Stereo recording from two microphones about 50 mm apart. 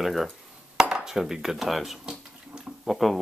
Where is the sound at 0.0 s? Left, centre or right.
Centre.